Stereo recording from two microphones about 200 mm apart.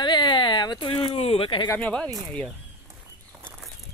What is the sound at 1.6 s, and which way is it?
Speech, 10° left (ahead or behind).